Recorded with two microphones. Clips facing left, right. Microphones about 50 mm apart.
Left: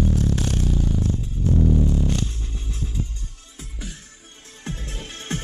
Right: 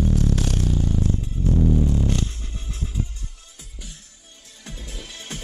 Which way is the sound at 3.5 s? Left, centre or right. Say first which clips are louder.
Left 10 dB; left.